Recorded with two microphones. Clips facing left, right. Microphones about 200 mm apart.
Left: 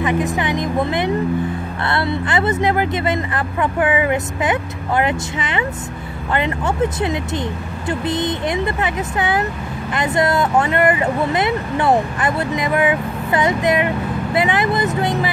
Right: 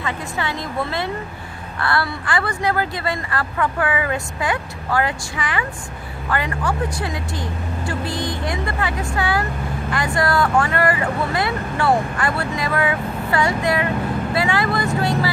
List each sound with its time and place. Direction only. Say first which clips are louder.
0.0 s a woman's voice: left 7 dB; 20° left (ahead or behind)